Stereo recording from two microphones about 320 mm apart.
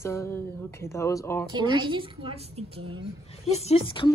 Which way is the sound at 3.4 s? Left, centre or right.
Centre.